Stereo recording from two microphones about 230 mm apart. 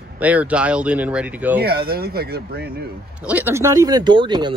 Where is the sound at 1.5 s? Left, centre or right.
Right.